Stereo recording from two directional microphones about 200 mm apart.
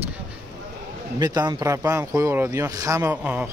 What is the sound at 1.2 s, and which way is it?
Speech, 20° right (ahead or behind).